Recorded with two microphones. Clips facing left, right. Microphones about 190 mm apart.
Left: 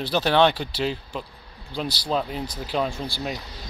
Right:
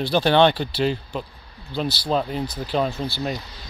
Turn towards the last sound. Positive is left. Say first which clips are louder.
# right 3 dB
turn(degrees=10)  # may be behind; listen again after turning